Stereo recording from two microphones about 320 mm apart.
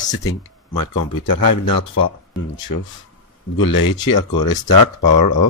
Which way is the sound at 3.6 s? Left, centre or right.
Left.